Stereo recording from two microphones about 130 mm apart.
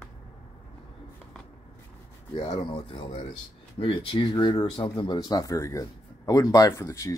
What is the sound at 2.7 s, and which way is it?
A man's voice, 40° left (ahead or behind).